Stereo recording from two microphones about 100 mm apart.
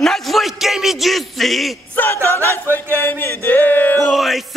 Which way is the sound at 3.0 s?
20° left (ahead or behind).